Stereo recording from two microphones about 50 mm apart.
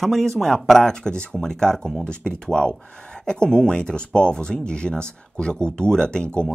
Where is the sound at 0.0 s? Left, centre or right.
Centre.